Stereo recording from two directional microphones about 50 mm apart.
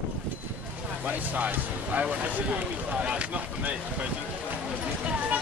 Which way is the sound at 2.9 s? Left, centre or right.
Centre.